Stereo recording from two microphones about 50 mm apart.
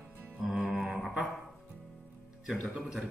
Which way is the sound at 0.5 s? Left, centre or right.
Centre.